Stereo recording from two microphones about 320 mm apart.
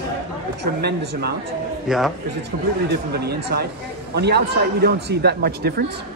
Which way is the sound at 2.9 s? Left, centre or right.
Right.